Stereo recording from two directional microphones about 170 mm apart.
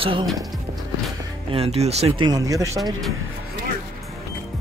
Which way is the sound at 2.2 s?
20° right (ahead or behind).